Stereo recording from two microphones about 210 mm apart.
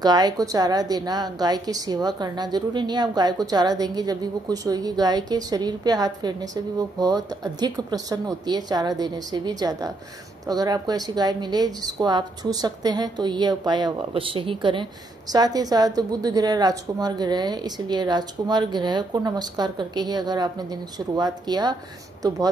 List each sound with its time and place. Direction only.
0.0 s speech: 20° right (ahead or behind)